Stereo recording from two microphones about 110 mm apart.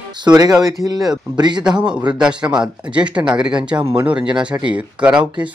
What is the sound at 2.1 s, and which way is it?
A man's voice, 10° right (ahead or behind).